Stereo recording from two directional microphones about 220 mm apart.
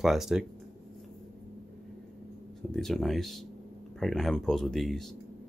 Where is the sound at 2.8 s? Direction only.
Centre (ahead or behind).